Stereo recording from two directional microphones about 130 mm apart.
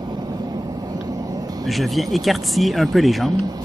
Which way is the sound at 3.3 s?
30° right (ahead or behind).